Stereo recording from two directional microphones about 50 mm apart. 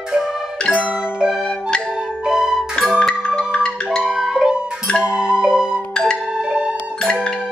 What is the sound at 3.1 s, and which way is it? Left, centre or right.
Marimba, centre.